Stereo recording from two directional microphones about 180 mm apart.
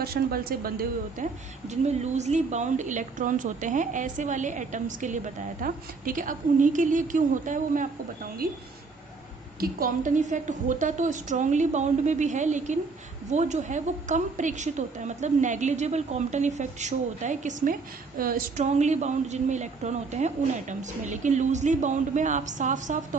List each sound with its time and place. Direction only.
0.0 s a woman's voice: 55° right (ahead or behind)
1.7 s a woman's voice: 40° right (ahead or behind)